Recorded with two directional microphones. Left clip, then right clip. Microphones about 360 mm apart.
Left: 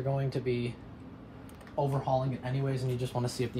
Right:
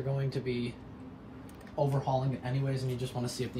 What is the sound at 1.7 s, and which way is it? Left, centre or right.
Speech, centre.